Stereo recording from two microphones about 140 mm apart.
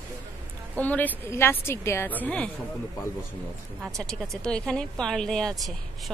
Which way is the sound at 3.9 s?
Centre (ahead or behind).